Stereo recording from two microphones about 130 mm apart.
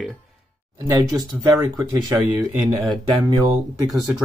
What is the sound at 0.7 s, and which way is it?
Speech, 25° right (ahead or behind).